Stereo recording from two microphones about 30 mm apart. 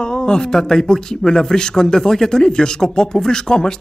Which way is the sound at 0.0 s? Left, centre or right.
Left.